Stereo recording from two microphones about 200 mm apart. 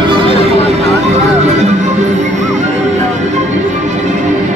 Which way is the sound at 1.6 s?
35° right (ahead or behind).